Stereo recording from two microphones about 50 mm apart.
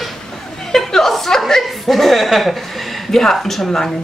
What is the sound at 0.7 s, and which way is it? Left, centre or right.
A woman's voice, centre.